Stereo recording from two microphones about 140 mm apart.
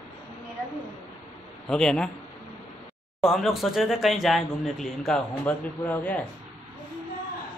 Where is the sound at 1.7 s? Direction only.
5° left (ahead or behind).